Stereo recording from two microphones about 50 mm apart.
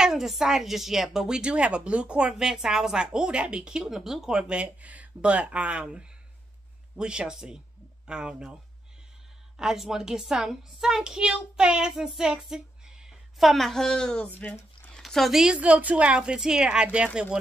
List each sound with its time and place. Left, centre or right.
0.0 s a woman's voice: centre
9.6 s a woman's voice: centre
13.4 s speech: centre
15.0 s a sound: centre
15.4 s a woman's voice: right